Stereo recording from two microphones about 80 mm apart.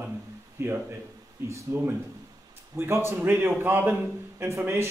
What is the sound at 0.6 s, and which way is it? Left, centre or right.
A man's voice, right.